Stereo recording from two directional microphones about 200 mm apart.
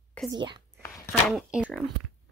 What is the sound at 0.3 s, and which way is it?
Speech, 20° right (ahead or behind).